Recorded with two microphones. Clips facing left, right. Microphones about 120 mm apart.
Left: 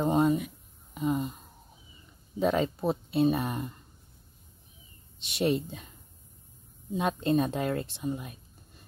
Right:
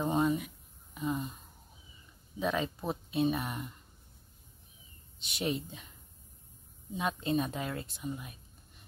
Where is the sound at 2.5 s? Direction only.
35° left (ahead or behind).